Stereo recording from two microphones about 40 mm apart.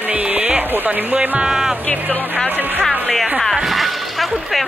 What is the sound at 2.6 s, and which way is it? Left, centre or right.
Speech, right.